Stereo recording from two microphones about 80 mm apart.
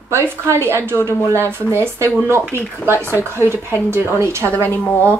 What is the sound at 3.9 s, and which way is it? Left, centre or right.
Speech, right.